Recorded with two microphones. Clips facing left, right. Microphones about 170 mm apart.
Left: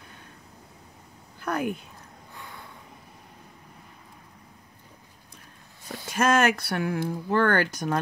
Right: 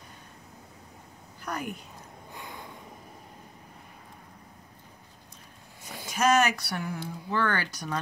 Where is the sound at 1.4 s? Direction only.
55° left (ahead or behind).